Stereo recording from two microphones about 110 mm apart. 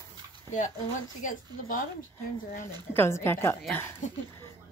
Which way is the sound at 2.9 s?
20° left (ahead or behind).